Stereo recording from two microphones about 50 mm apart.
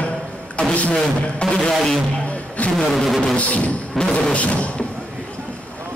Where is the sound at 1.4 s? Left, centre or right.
Centre.